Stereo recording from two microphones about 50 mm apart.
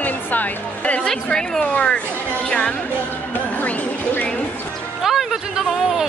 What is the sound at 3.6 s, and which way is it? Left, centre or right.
Speech, left.